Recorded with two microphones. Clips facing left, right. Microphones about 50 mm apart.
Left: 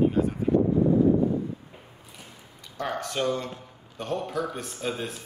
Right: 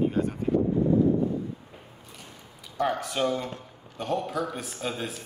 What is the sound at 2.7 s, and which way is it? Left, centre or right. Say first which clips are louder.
A man's voice: right 2 dB; centre.